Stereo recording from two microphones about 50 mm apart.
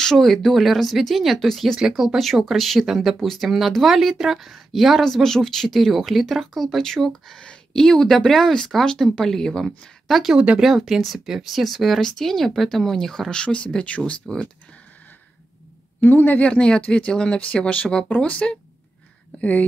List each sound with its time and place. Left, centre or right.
0.0 s speech: centre
1.8 s speech: centre
10.0 s speech: centre; by 14.1 s left
16.0 s speech: left
16.4 s speech: centre